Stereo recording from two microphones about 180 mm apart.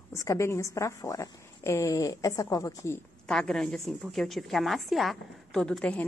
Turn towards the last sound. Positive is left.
turn(degrees=5)  # may be behind; listen again after turning